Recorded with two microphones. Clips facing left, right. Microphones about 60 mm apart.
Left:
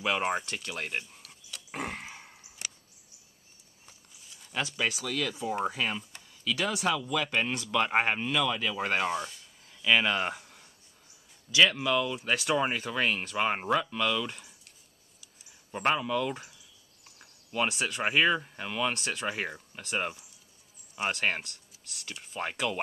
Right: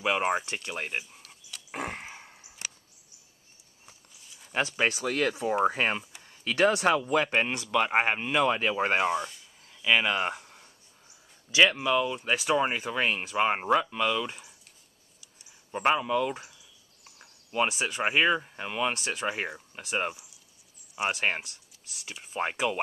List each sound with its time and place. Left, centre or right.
0.0 s speech: centre
0.5 s dog: centre
1.8 s a sound: centre
3.8 s a sound: centre
4.5 s speech: right
7.3 s speech: right
7.6 s speech: centre
8.3 s speech: right
9.0 s speech: centre
9.8 s a sound: centre
11.5 s speech: centre
15.7 s speech: centre